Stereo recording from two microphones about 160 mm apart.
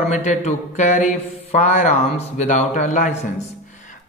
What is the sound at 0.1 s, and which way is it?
A man's voice, 50° left (ahead or behind).